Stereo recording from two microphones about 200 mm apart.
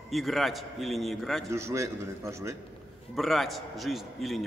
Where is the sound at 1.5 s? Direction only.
15° right (ahead or behind).